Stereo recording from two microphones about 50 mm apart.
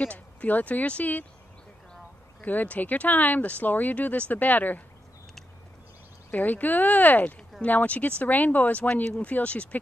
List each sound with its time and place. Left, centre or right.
0.0 s speech: left
2.4 s speech: left
6.3 s speech: left